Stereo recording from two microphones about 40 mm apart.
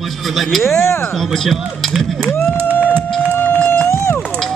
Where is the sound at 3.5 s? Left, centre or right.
Left.